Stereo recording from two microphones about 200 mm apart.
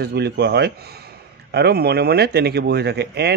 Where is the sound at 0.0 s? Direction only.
55° right (ahead or behind).